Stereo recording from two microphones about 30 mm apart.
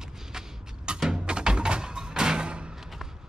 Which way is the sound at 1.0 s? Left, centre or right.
Right.